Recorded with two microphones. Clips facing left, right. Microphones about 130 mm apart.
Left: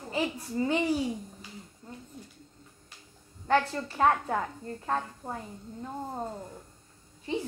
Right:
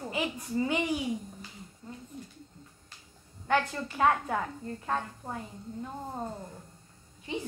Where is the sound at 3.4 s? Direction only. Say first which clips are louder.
Left 2 dB; 30° left (ahead or behind).